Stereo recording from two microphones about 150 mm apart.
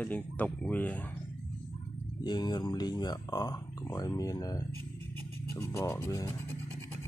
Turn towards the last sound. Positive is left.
turn(degrees=20)  # may be behind; listen again after turning